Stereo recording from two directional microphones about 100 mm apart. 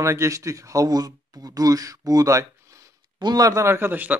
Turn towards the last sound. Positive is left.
turn(degrees=-20)  # may be behind; listen again after turning